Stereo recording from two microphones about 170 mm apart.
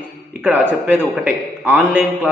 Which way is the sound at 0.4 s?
10° right (ahead or behind).